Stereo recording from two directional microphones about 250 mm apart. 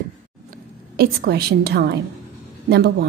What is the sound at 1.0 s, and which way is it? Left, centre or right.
A woman's voice, right.